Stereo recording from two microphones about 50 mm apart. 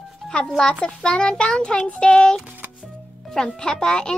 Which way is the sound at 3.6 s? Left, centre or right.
Centre.